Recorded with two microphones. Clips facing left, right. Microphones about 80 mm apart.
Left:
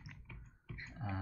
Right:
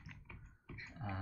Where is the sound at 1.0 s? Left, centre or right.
Centre.